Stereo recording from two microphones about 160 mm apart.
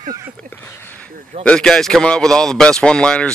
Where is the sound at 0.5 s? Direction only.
15° left (ahead or behind).